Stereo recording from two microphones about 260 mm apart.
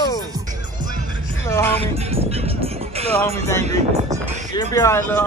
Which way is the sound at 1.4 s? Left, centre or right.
Centre.